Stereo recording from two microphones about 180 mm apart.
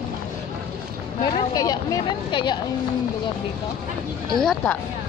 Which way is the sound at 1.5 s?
20° left (ahead or behind).